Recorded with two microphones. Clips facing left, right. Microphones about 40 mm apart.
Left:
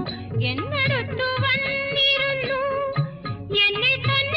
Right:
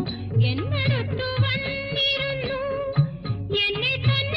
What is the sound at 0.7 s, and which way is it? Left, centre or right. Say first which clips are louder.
Music of bollywood: left 3 dB; left.